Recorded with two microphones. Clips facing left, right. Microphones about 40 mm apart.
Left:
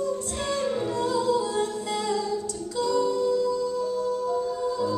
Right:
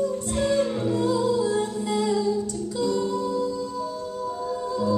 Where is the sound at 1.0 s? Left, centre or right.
Centre.